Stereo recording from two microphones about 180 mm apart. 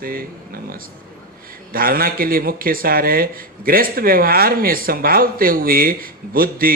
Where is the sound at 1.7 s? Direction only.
55° right (ahead or behind).